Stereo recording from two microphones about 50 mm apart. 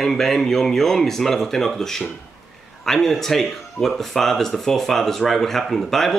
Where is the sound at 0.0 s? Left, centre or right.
Centre.